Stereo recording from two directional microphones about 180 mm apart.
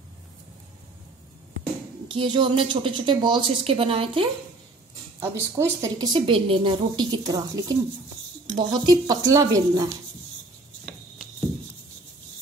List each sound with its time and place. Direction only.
2.0 s a woman's voice: 25° right (ahead or behind)
5.2 s a woman's voice: 15° right (ahead or behind)